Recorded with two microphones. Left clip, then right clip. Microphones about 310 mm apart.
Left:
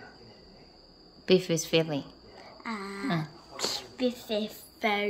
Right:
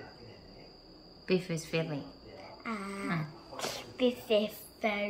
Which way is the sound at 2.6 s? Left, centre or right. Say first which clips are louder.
Left 2 dB; centre.